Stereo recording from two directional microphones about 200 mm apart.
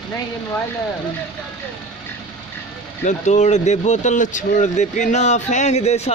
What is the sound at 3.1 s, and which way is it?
Speech, 35° left (ahead or behind).